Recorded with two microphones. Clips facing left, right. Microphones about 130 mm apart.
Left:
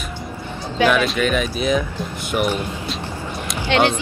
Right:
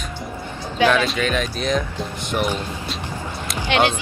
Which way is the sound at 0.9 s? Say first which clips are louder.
Left 2 dB; 5° left (ahead or behind).